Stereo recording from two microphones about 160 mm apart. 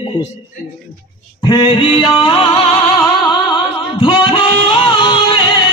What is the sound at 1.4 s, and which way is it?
Music, 25° left (ahead or behind).